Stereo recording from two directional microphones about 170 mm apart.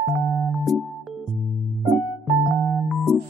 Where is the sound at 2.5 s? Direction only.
Centre (ahead or behind).